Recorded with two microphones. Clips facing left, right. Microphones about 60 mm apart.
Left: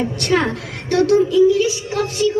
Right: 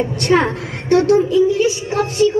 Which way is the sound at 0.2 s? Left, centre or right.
Right.